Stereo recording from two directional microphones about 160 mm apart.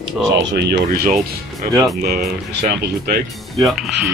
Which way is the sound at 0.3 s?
90° right.